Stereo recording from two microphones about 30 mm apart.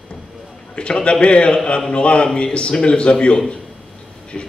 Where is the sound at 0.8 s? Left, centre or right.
Left.